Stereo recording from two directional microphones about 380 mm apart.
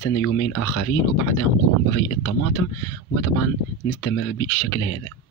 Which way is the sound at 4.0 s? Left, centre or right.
Left.